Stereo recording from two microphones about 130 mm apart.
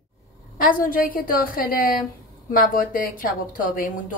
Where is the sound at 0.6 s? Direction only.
90° left.